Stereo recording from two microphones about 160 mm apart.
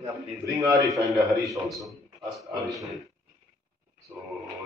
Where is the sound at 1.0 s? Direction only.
Centre (ahead or behind).